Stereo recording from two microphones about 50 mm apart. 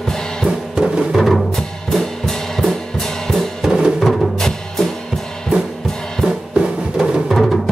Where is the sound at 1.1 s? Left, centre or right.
Centre.